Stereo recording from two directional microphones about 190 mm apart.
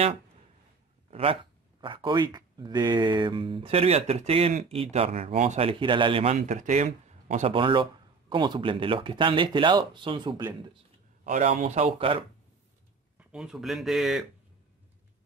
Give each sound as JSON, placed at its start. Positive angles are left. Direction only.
{"t": 1.1, "sound": "speech", "side_deg": -30}
{"t": 6.3, "sound": "speech", "side_deg": -40}
{"t": 7.5, "sound": "speech", "side_deg": -25}
{"t": 11.2, "sound": "speech", "side_deg": -40}
{"t": 13.2, "sound": "speech", "side_deg": -5}